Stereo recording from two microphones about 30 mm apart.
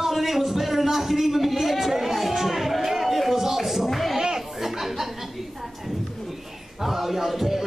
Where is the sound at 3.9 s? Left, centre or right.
Centre.